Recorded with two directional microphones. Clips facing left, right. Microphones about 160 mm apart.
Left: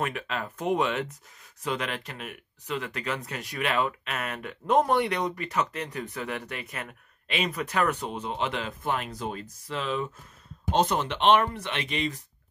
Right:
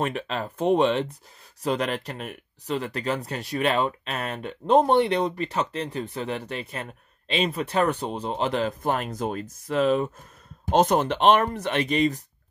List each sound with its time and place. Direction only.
0.0 s speech: 30° right (ahead or behind)